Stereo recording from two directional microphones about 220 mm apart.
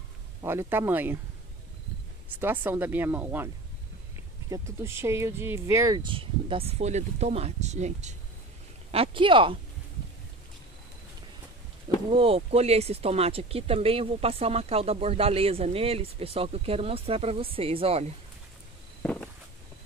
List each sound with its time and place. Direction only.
0.4 s speech: 10° right (ahead or behind)
2.4 s speech: 10° right (ahead or behind)
4.5 s speech: 15° right (ahead or behind)
12.1 s speech: 25° right (ahead or behind)